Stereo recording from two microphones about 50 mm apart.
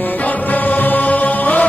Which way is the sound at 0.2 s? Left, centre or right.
Left.